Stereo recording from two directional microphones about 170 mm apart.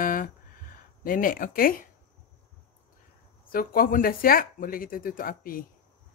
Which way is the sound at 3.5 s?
60° left (ahead or behind).